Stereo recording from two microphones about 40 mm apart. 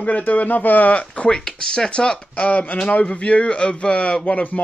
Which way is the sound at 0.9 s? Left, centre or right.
Left.